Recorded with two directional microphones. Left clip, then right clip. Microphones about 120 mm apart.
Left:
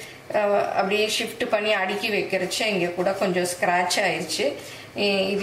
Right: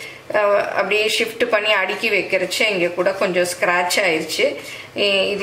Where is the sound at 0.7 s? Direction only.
20° right (ahead or behind).